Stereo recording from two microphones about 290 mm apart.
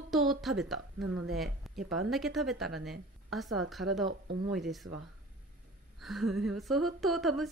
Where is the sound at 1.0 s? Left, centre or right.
Right.